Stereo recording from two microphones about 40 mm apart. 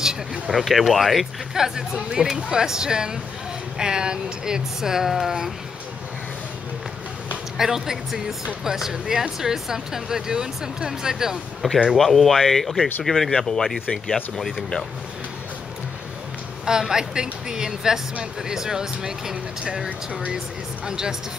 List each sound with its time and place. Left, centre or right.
0.0 s speech: centre
7.5 s speech: centre
11.6 s speech: centre
16.6 s speech: centre